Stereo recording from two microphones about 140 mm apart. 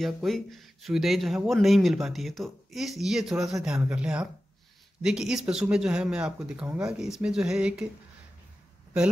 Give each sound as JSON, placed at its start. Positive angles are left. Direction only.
{"t": 0.0, "sound": "speech", "side_deg": 0}